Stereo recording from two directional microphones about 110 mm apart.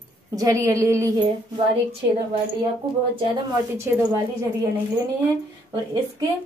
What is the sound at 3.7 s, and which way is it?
Speech, 25° right (ahead or behind).